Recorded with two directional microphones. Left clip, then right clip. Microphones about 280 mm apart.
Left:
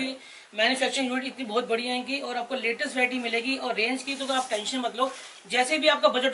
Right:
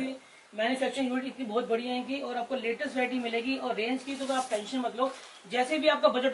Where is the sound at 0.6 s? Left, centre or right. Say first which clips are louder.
Left 5 dB; centre.